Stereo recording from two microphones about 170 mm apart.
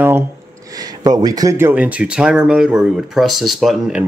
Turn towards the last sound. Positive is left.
turn(degrees=0)  # may be behind; listen again after turning